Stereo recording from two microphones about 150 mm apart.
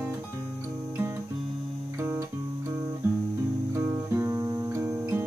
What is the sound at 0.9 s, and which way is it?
Guitar, 15° right (ahead or behind).